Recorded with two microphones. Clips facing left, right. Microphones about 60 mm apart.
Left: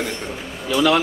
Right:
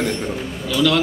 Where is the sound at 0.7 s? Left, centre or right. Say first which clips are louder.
Left 1 dB; left.